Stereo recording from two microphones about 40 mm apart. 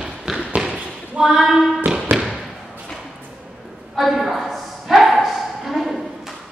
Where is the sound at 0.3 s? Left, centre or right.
Centre.